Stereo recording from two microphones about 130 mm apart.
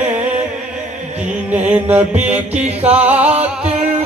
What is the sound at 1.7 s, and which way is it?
Mantra, 10° right (ahead or behind).